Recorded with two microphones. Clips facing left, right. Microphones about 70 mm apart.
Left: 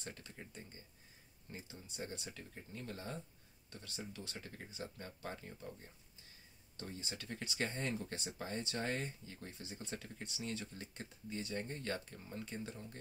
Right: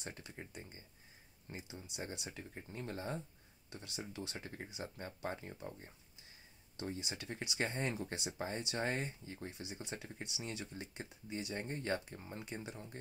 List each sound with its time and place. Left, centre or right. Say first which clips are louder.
0.0 s speech: right 2 dB; centre
9.5 s speech: left 1 dB; centre